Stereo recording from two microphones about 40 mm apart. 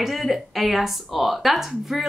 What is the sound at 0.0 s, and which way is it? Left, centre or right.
Speech, centre.